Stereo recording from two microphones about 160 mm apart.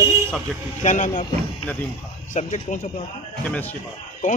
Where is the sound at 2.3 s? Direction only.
45° left (ahead or behind).